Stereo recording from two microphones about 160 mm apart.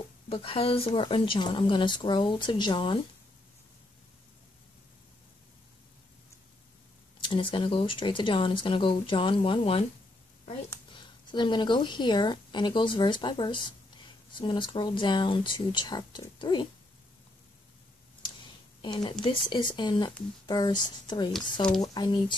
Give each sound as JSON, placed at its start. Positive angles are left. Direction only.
{"t": 0.3, "sound": "speech", "side_deg": 35}
{"t": 7.2, "sound": "speech", "side_deg": 30}
{"t": 11.0, "sound": "speech", "side_deg": 30}
{"t": 18.8, "sound": "speech", "side_deg": 30}